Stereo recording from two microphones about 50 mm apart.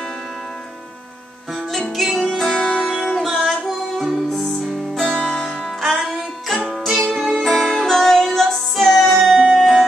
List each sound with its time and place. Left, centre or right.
2.1 s music: centre
3.2 s music: centre
5.2 s music: centre
5.8 s music: centre
7.2 s music: centre